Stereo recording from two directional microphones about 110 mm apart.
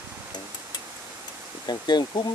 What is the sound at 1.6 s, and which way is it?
Speech, 40° left (ahead or behind).